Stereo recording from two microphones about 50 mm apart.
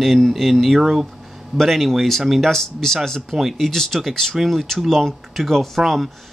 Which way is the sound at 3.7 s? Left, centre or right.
Centre.